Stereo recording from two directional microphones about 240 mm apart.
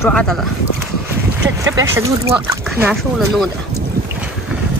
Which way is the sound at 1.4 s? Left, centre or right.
Centre.